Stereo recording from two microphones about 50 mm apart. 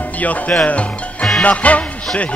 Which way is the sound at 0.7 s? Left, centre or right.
Left.